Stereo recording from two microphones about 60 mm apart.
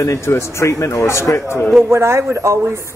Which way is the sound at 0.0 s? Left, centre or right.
Left.